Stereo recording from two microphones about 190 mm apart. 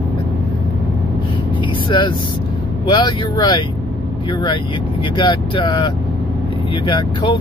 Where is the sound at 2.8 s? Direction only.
25° left (ahead or behind).